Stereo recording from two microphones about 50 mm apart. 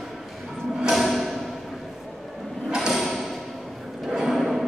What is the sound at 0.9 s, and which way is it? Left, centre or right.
Music, centre.